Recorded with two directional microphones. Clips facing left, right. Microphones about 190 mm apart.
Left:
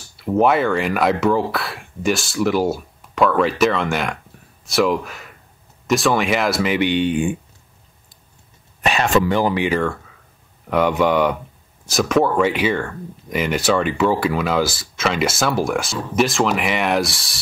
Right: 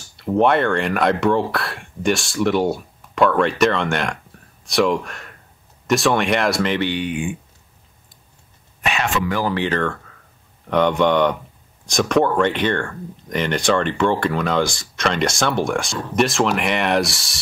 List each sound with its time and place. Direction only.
0.2 s speech: 5° left (ahead or behind)
6.9 s speech: 25° left (ahead or behind)
8.8 s speech: 40° left (ahead or behind)
9.3 s speech: 15° left (ahead or behind); by 17.4 s centre (ahead or behind)